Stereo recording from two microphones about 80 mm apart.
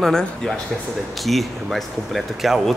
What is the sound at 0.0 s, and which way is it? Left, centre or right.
Speech, centre.